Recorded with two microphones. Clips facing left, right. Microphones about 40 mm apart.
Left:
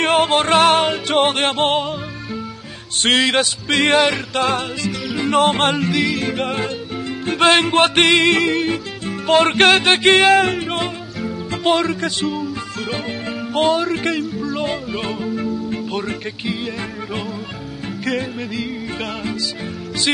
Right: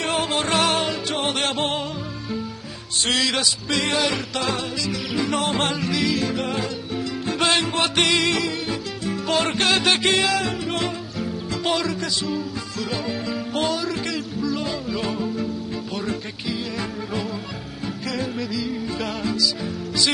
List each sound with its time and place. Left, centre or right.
0.0 s music: left
3.0 s music: left
14.6 s speech: left
18.0 s music: left